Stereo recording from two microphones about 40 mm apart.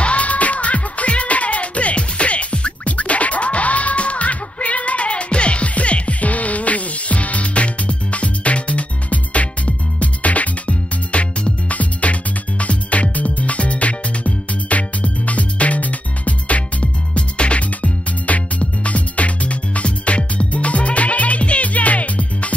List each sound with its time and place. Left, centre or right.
0.0 s music: left